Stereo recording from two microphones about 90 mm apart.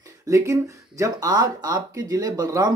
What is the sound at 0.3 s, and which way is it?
Speech, 35° right (ahead or behind).